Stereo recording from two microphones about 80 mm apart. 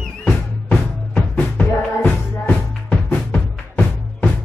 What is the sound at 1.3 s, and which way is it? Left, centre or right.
Music, left.